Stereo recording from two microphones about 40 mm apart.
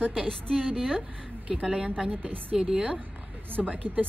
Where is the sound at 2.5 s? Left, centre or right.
Right.